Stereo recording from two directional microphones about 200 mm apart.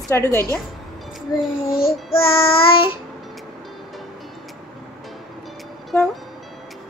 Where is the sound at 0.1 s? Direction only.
15° left (ahead or behind).